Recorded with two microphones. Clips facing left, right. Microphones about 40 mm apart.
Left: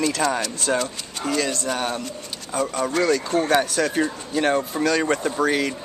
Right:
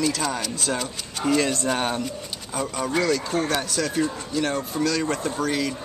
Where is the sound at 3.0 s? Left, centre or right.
Centre.